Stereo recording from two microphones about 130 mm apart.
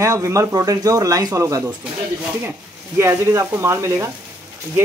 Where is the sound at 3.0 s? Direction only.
20° right (ahead or behind).